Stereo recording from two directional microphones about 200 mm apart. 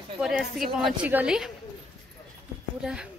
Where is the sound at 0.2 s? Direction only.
Centre (ahead or behind).